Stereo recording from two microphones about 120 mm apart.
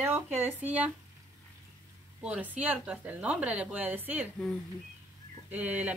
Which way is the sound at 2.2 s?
10° right (ahead or behind).